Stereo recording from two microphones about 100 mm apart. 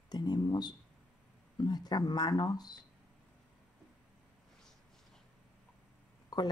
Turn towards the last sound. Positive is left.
turn(degrees=40)  # may be behind; listen again after turning